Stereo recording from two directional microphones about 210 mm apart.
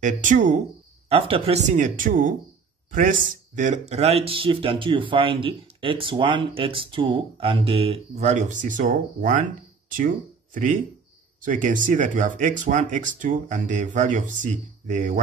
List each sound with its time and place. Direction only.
0.0 s speech: 35° right (ahead or behind)
1.1 s speech: 25° right (ahead or behind)